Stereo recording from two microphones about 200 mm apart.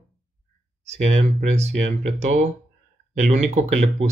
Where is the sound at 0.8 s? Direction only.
35° right (ahead or behind).